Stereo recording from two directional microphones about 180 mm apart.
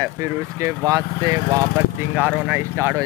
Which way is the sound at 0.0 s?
15° right (ahead or behind).